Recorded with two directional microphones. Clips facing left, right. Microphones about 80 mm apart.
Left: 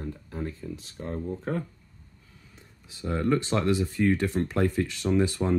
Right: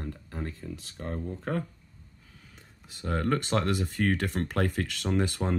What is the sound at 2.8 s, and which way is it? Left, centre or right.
Speech, right.